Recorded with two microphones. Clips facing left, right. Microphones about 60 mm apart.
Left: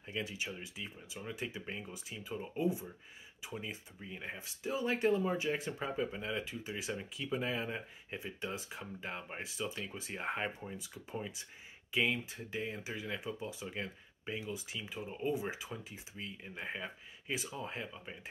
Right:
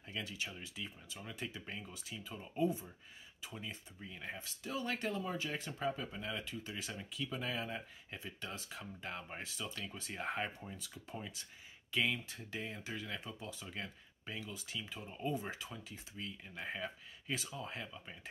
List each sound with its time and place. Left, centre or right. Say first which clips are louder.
0.0 s speech: left 3 dB; centre